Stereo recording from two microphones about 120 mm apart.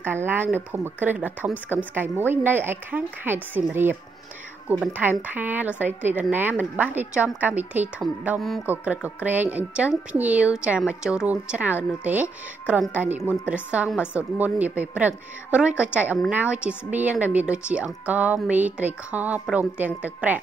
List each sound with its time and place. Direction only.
0.0 s a woman's voice: 20° right (ahead or behind)
5.2 s a woman's voice: 15° right (ahead or behind)
8.4 s speech: centre (ahead or behind)
8.6 s a woman's voice: 10° right (ahead or behind)